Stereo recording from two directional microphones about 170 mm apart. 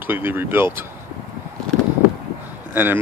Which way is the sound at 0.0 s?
10° right (ahead or behind).